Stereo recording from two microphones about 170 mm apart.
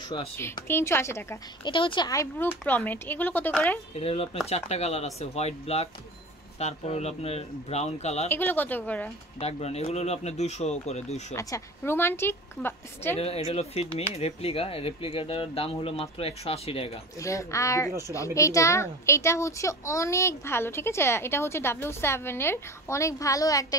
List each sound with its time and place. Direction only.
0.4 s a woman's voice: 15° left (ahead or behind)
1.7 s a woman's voice: 30° left (ahead or behind); by 3.8 s 10° left (ahead or behind)
3.9 s speech: 35° left (ahead or behind)
8.3 s a woman's voice: 10° left (ahead or behind)
9.4 s speech: 40° left (ahead or behind)
11.3 s a woman's voice: 15° left (ahead or behind)
13.5 s speech: 35° left (ahead or behind)
17.2 s a woman's voice: 20° left (ahead or behind)